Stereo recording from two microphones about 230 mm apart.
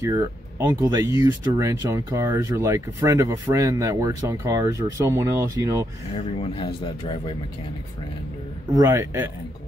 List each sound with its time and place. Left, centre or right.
0.0 s speech: centre
6.4 s a man's voice: left
8.7 s speech: centre